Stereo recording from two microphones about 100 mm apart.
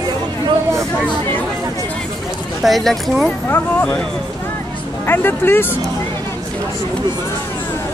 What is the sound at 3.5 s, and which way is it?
Speech, 15° left (ahead or behind).